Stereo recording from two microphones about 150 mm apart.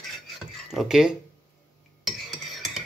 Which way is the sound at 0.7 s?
Centre (ahead or behind).